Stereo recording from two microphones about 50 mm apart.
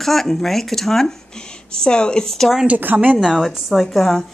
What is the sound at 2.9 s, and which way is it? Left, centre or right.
Speech, right.